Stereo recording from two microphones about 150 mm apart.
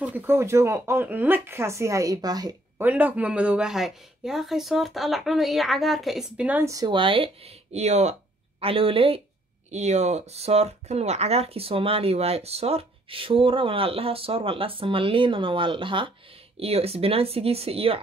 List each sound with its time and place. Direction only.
0.0 s speech: 15° right (ahead or behind)
2.8 s a woman's voice: 10° right (ahead or behind)
6.7 s speech: 30° right (ahead or behind)
9.7 s speech: 50° right (ahead or behind)